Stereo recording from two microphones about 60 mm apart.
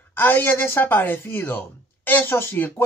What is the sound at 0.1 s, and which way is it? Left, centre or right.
Speech, left.